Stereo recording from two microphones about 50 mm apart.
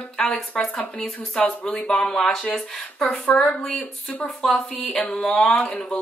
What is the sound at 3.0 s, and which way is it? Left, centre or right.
Speech, left.